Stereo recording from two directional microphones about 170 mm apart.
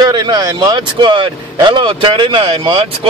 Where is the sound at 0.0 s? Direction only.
25° right (ahead or behind).